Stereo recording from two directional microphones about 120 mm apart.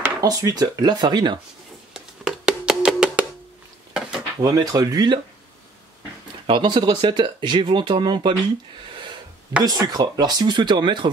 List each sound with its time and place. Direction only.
0.2 s speech: 30° right (ahead or behind)
2.0 s music: 5° right (ahead or behind)
4.4 s speech: 35° right (ahead or behind)
6.4 s speech: 45° right (ahead or behind)
9.6 s speech: 35° right (ahead or behind)